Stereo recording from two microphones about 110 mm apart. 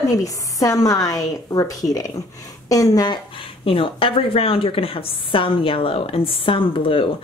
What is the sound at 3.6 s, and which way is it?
A woman's voice, 55° left (ahead or behind).